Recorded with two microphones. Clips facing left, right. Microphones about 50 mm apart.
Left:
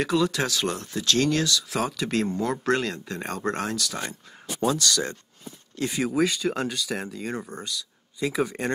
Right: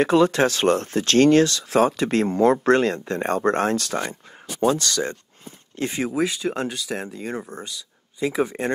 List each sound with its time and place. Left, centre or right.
0.0 s speech: right
6.0 s speech: centre